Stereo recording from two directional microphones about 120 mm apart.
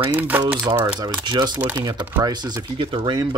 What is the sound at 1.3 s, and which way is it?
Speech, 40° right (ahead or behind).